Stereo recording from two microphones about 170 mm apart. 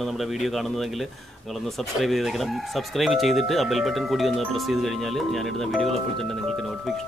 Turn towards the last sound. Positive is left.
turn(degrees=0)  # may be behind; listen again after turning